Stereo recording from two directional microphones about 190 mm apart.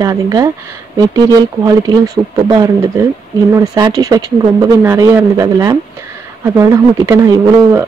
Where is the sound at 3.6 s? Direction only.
20° right (ahead or behind).